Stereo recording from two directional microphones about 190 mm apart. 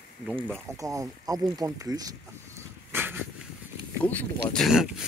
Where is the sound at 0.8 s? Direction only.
15° right (ahead or behind).